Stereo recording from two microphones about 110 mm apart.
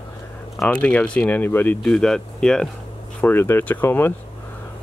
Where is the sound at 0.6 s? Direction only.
10° left (ahead or behind).